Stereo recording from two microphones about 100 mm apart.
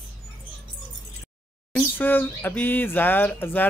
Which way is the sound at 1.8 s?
20° left (ahead or behind).